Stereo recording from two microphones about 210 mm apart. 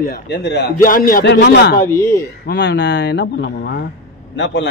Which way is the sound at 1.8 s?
15° left (ahead or behind).